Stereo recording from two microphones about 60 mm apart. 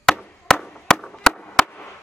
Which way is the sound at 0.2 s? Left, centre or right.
Centre.